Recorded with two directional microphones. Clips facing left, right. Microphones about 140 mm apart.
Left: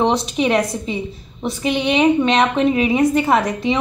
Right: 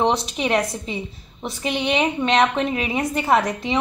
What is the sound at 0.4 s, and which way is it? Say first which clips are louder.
Speech: left 4 dB; 20° left (ahead or behind).